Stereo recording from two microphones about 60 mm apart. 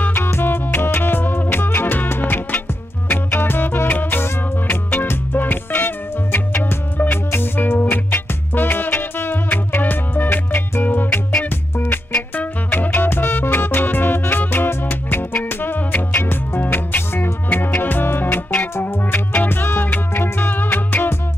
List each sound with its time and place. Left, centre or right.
0.0 s music: left
19.5 s music: left